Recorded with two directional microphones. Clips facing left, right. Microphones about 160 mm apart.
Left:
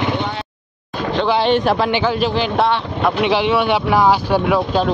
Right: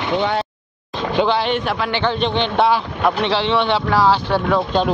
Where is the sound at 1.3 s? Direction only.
30° left (ahead or behind).